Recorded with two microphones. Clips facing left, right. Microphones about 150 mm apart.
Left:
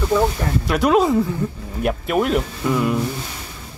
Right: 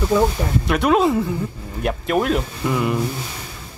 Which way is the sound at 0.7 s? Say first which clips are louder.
Left 1 dB; centre (ahead or behind).